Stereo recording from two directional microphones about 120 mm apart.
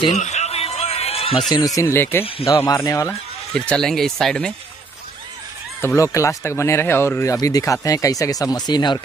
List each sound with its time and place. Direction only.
0.1 s a sound: 70° left (ahead or behind); by 1.4 s 50° left (ahead or behind)
1.8 s speech: 20° left (ahead or behind)
3.1 s speech: 10° left (ahead or behind)
5.9 s speech: 25° left (ahead or behind)